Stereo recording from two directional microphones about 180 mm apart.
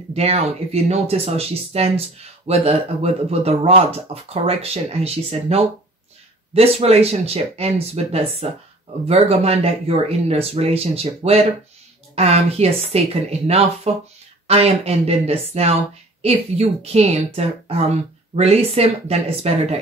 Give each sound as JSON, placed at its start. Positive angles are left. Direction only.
{"t": 0.1, "sound": "speech", "side_deg": -35}